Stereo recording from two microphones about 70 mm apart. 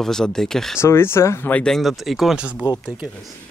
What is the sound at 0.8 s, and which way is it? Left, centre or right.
Speech, left.